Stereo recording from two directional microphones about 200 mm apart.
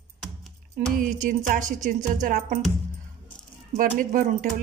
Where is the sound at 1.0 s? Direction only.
40° right (ahead or behind).